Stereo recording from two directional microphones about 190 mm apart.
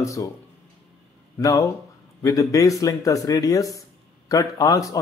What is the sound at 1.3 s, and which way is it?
A man's voice, 20° left (ahead or behind).